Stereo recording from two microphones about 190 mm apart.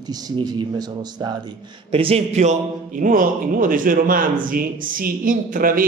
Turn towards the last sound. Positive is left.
turn(degrees=-50)  # may be behind; listen again after turning